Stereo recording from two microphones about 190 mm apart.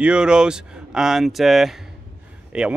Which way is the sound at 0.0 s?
5° right (ahead or behind).